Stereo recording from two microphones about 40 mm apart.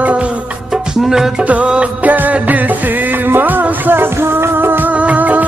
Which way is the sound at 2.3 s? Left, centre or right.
Right.